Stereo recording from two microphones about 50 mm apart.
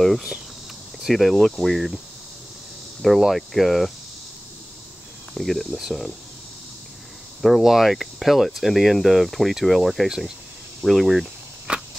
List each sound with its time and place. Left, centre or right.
0.0 s speech: centre
3.0 s speech: centre
5.3 s speech: centre
7.4 s speech: centre
11.7 s a sound: right